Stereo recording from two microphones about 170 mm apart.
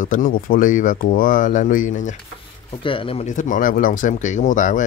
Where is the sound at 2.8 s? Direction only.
30° left (ahead or behind).